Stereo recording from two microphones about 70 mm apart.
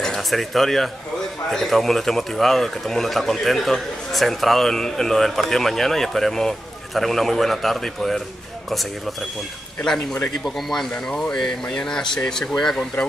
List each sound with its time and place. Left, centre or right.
0.0 s a man's voice: centre
9.9 s speech: left
10.4 s speech: centre